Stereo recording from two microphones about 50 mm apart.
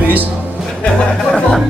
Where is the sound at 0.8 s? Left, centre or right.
Left.